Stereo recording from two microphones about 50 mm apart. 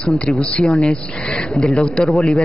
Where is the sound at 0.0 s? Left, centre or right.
Left.